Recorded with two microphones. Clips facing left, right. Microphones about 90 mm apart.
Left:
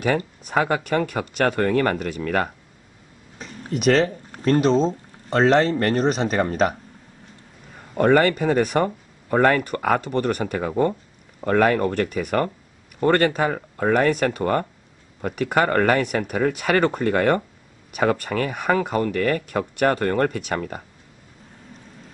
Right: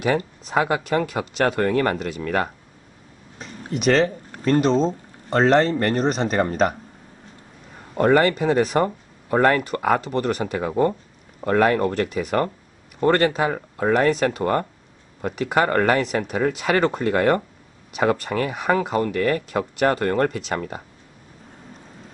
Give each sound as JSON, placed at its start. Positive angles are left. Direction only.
{"t": 0.5, "sound": "speech", "side_deg": -5}
{"t": 3.7, "sound": "speech", "side_deg": 0}
{"t": 7.9, "sound": "speech", "side_deg": 0}